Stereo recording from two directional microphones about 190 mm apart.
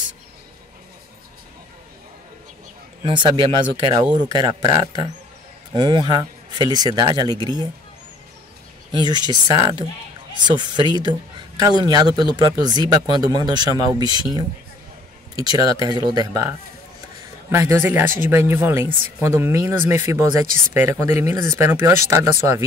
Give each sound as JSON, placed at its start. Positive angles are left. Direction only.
{"t": 3.0, "sound": "speech", "side_deg": -25}
{"t": 8.9, "sound": "speech", "side_deg": -20}